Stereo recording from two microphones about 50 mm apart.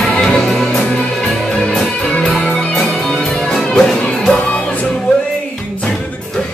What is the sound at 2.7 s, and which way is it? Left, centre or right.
Music, centre.